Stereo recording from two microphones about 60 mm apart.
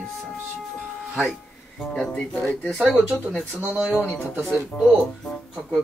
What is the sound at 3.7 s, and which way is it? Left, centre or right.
Speech, centre.